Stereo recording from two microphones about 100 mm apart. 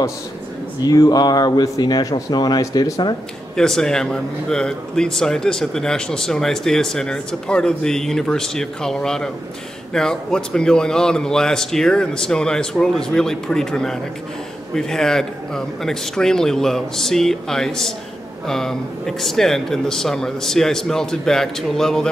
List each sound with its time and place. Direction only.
0.8 s speech: 40° left (ahead or behind)
3.5 s a man's voice: 5° left (ahead or behind)